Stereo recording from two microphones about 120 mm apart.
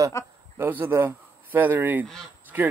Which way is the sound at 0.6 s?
15° right (ahead or behind).